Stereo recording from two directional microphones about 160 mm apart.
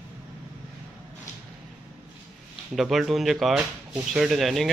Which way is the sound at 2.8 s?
Centre (ahead or behind).